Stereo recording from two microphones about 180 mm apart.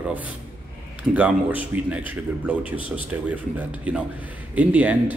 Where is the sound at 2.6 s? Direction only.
30° left (ahead or behind).